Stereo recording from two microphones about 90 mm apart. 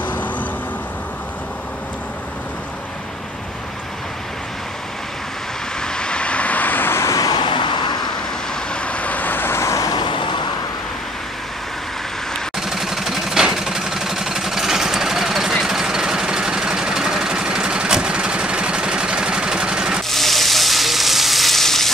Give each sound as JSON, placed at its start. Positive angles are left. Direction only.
{"t": 5.8, "sound": "vehicle", "side_deg": 10}
{"t": 7.2, "sound": "vehicle", "side_deg": 50}
{"t": 8.8, "sound": "vehicle", "side_deg": 15}
{"t": 12.5, "sound": "vehicle", "side_deg": -5}
{"t": 20.1, "sound": "frying", "side_deg": 0}